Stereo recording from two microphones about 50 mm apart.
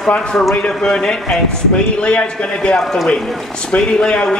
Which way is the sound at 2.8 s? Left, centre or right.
Centre.